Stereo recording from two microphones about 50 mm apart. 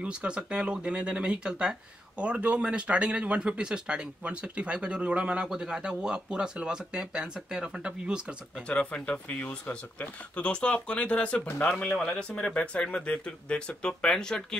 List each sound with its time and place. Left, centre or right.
0.0 s speech: right
8.6 s speech: left